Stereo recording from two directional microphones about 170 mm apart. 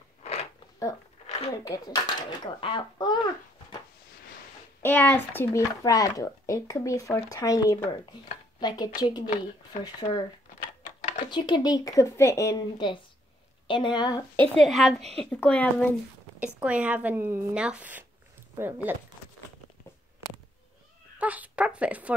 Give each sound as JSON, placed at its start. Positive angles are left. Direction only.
{"t": 0.2, "sound": "a sound", "side_deg": 40}
{"t": 1.6, "sound": "speech", "side_deg": 25}
{"t": 4.8, "sound": "speech", "side_deg": 10}
{"t": 11.2, "sound": "speech", "side_deg": 25}
{"t": 14.5, "sound": "speech", "side_deg": 0}
{"t": 16.3, "sound": "speech", "side_deg": -10}
{"t": 21.2, "sound": "speech", "side_deg": -10}